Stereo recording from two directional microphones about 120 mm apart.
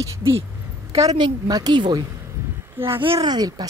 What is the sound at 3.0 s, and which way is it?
Speech, 40° right (ahead or behind).